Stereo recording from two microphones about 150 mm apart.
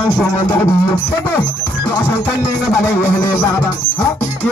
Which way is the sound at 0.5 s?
15° left (ahead or behind).